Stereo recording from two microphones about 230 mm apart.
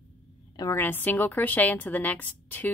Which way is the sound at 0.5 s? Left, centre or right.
Centre.